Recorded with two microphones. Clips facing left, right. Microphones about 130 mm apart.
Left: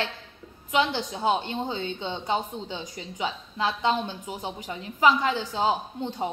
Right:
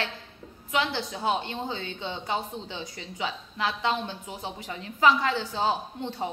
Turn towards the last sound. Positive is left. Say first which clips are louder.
# left 2 dB
turn(degrees=15)  # may be behind; listen again after turning